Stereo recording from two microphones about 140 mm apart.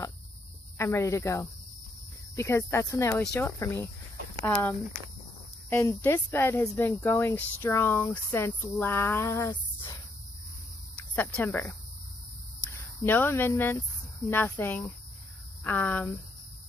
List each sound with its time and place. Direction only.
0.7 s speech: 20° left (ahead or behind)
11.0 s speech: 15° left (ahead or behind)